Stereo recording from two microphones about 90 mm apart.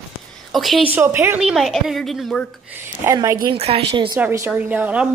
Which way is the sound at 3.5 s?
75° right (ahead or behind).